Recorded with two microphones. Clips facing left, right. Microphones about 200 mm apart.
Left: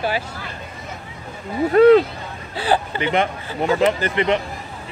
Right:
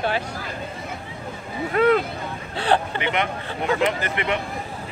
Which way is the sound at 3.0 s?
35° left (ahead or behind).